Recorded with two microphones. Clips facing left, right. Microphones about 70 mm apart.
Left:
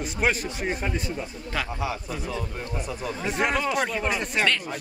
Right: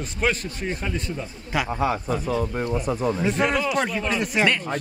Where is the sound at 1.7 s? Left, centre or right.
Right.